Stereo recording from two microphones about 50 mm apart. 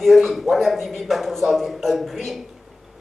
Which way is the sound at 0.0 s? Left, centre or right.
Centre.